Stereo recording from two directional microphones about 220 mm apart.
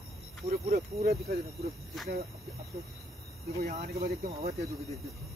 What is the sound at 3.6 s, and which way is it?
Speech, 35° right (ahead or behind).